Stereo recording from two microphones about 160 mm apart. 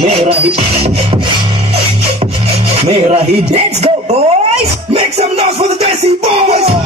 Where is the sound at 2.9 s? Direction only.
40° right (ahead or behind).